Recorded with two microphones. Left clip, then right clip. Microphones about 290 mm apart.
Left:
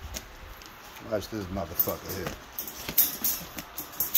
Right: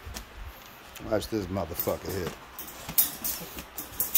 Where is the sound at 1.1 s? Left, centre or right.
Right.